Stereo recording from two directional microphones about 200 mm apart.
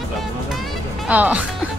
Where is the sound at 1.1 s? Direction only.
5° right (ahead or behind).